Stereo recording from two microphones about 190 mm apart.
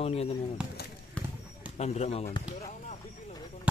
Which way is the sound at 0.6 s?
5° right (ahead or behind).